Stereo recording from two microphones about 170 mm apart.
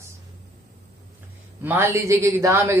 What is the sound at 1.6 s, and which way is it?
Speech, 15° right (ahead or behind).